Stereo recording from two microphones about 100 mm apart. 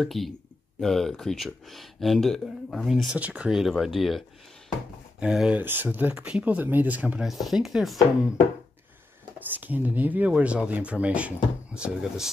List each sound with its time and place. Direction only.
0.0 s speech: centre (ahead or behind)
3.2 s speech: 15° right (ahead or behind)
3.5 s speech: centre (ahead or behind)
5.2 s speech: 10° right (ahead or behind)
5.6 s speech: 20° right (ahead or behind)
7.2 s speech: centre (ahead or behind)
9.5 s speech: 20° right (ahead or behind)